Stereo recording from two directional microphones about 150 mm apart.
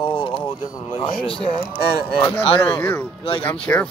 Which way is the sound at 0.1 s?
35° left (ahead or behind).